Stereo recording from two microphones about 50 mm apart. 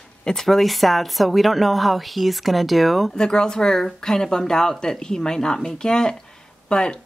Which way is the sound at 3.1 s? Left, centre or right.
Centre.